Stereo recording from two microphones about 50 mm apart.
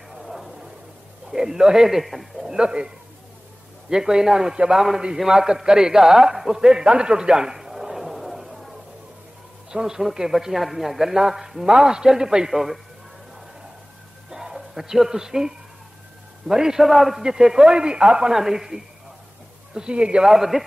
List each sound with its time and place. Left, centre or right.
0.1 s a sound: centre
1.3 s speech: centre
2.5 s speech: centre
3.9 s a man's voice: centre
14.3 s speech: centre
20.2 s speech: centre